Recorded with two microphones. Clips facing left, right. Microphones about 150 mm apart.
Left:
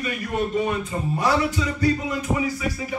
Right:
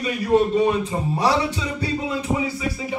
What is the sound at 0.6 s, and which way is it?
Speech, 30° right (ahead or behind).